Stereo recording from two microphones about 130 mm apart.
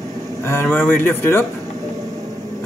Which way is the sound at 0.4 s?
20° left (ahead or behind).